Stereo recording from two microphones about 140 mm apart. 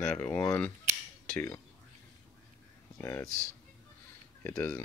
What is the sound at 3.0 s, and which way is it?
Speech, 20° left (ahead or behind).